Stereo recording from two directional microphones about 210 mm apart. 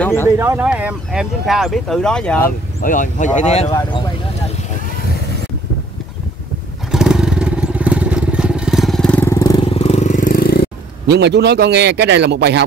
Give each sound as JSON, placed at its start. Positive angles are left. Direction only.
{"t": 0.0, "sound": "a sound", "side_deg": 10}
{"t": 0.4, "sound": "speech", "side_deg": -10}
{"t": 2.4, "sound": "speech", "side_deg": 40}
{"t": 3.7, "sound": "speech", "side_deg": 20}
{"t": 6.9, "sound": "motorcycle", "side_deg": -5}
{"t": 11.1, "sound": "a man's voice", "side_deg": -55}